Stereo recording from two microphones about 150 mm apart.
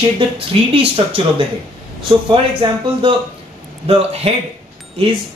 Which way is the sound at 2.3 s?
35° right (ahead or behind).